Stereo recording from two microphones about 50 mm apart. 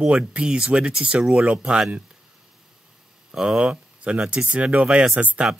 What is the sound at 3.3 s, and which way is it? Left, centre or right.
Speech, centre.